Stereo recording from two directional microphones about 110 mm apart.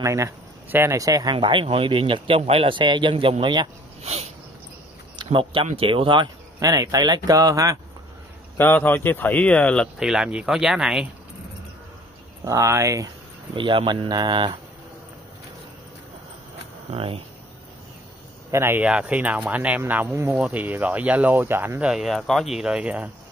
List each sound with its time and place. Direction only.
0.0 s speech: 25° right (ahead or behind)
1.3 s speech: 50° right (ahead or behind)
4.0 s a sound: 70° right (ahead or behind)
5.1 s speech: 50° right (ahead or behind)
6.6 s speech: 35° right (ahead or behind)
8.5 s speech: 15° left (ahead or behind)
9.9 s speech: 5° right (ahead or behind)
12.4 s speech: 25° right (ahead or behind)
13.6 s speech: 50° right (ahead or behind)
16.9 s speech: 60° right (ahead or behind)
18.5 s speech: 20° right (ahead or behind)
18.9 s speech: 10° right (ahead or behind)
21.8 s speech: 5° right (ahead or behind)